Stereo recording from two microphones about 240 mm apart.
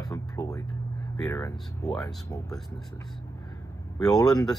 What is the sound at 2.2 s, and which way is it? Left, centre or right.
Speech, centre.